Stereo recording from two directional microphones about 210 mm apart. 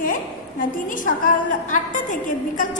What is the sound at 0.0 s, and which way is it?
A woman's voice, 40° left (ahead or behind).